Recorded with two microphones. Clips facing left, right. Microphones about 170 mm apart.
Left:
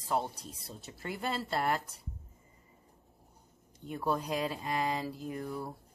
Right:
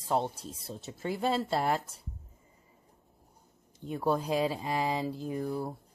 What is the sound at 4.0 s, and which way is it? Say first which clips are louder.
Speech: right 4 dB; 30° right (ahead or behind).